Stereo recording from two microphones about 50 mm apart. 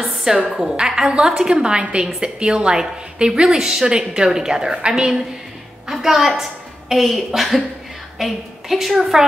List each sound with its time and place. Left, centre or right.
0.2 s a woman's voice: centre